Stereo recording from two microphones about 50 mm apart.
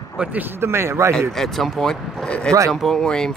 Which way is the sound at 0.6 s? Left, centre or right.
Right.